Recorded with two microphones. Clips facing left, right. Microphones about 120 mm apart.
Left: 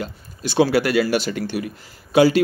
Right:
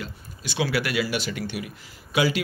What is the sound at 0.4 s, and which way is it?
Speech, 40° left (ahead or behind).